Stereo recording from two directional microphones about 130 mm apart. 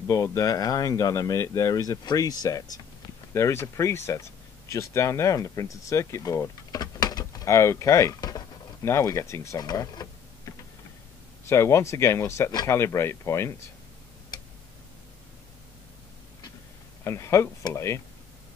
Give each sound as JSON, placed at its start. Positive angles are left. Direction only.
{"t": 0.0, "sound": "speech", "side_deg": 25}
{"t": 17.0, "sound": "speech", "side_deg": 20}